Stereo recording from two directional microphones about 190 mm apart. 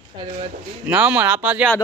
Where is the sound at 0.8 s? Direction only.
10° right (ahead or behind).